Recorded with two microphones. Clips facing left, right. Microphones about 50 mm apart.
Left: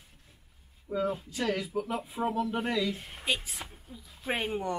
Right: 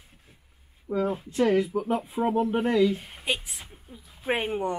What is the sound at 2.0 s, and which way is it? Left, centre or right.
Speech, centre.